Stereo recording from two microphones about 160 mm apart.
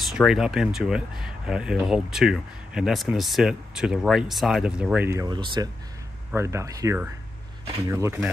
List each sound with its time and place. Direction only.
0.2 s speech: centre (ahead or behind); by 5.7 s 30° right (ahead or behind)
6.3 s speech: 15° right (ahead or behind)